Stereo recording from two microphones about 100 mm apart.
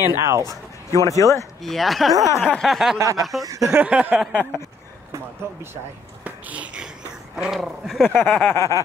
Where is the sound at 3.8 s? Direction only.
15° right (ahead or behind).